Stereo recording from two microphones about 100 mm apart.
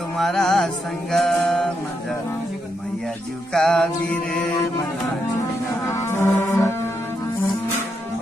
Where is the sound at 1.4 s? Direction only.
5° left (ahead or behind).